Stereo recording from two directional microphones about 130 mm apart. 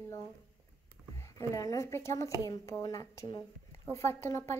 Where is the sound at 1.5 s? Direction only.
25° left (ahead or behind).